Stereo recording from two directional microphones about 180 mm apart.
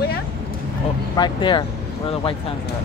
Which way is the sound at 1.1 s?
25° left (ahead or behind).